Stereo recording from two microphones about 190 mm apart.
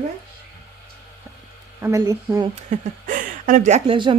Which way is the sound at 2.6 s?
40° right (ahead or behind).